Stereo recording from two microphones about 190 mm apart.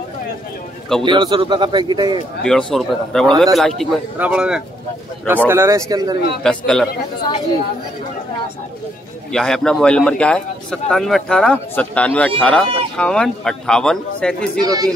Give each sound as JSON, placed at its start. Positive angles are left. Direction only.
{"t": 1.0, "sound": "a man's voice", "side_deg": -25}
{"t": 2.4, "sound": "speech", "side_deg": 5}
{"t": 5.5, "sound": "speech", "side_deg": -15}
{"t": 6.4, "sound": "speech", "side_deg": 5}
{"t": 9.3, "sound": "speech", "side_deg": 0}
{"t": 14.6, "sound": "a man's voice", "side_deg": -20}